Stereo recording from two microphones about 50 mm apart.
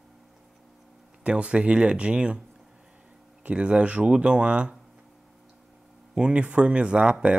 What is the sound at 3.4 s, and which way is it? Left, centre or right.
Speech, right.